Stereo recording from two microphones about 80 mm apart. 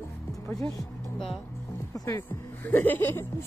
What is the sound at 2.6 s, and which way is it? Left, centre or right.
Speech, left.